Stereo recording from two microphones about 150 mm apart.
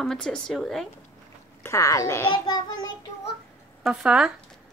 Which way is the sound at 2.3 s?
30° left (ahead or behind).